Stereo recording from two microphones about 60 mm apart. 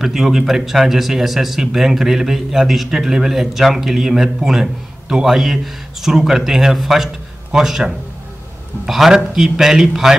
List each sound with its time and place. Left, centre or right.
0.0 s a man's voice: centre